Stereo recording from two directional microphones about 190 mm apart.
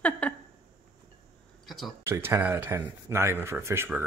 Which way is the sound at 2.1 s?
15° right (ahead or behind).